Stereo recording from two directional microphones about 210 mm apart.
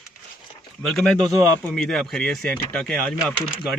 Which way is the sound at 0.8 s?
5° left (ahead or behind).